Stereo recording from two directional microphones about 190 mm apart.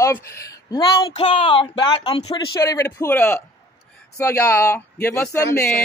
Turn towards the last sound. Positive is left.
turn(degrees=15)  # may be behind; listen again after turning